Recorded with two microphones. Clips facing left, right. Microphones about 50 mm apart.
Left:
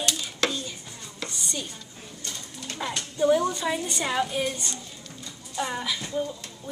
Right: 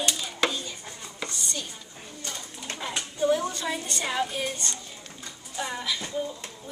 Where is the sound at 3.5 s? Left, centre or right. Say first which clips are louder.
Left 3 dB; centre.